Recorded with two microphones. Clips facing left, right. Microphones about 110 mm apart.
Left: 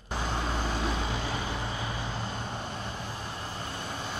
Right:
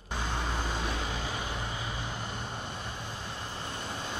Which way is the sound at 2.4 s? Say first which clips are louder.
Left 2 dB; 20° right (ahead or behind).